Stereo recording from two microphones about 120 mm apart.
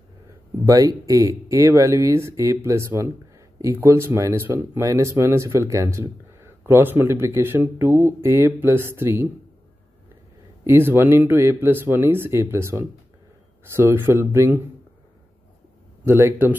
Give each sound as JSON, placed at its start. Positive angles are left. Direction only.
{"t": 0.7, "sound": "speech", "side_deg": -30}
{"t": 10.6, "sound": "speech", "side_deg": -20}
{"t": 16.1, "sound": "speech", "side_deg": -20}